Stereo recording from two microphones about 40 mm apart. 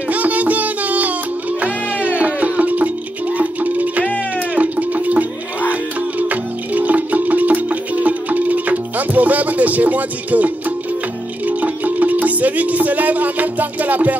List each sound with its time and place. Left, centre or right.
0.1 s music: right